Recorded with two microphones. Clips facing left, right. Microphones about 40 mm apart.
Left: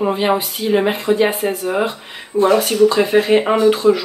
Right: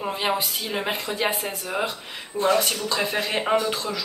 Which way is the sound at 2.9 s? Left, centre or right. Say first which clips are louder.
Left 11 dB; left.